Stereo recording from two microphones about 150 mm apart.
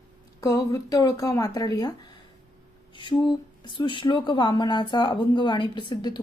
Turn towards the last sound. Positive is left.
turn(degrees=30)  # may be behind; listen again after turning